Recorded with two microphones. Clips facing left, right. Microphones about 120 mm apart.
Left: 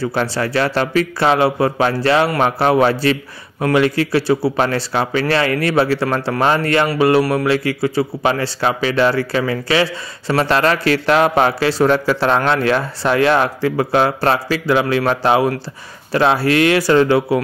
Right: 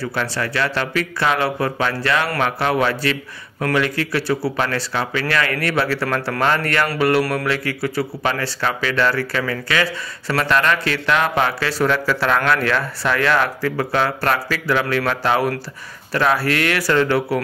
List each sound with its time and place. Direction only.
0.0 s a man's voice: 30° left (ahead or behind)
3.5 s a man's voice: 15° left (ahead or behind)
3.8 s speech: 25° left (ahead or behind)
6.9 s music: 20° left (ahead or behind)
7.4 s a man's voice: 25° left (ahead or behind)